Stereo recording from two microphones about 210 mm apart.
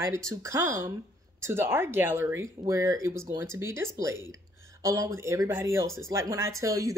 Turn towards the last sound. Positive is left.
turn(degrees=-15)  # may be behind; listen again after turning